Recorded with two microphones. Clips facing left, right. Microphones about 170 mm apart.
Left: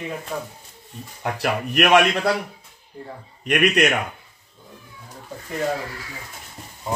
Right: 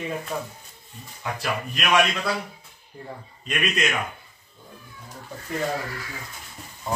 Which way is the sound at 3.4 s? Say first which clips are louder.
Left 8 dB; 70° left (ahead or behind).